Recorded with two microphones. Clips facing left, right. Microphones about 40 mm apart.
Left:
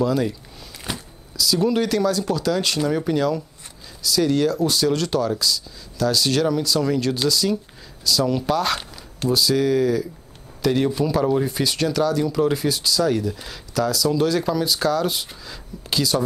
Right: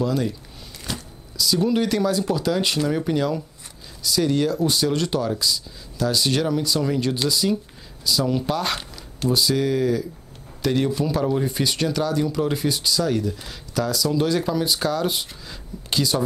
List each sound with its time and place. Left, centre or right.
0.0 s speech: centre
0.9 s shuffling cards: centre
1.3 s speech: centre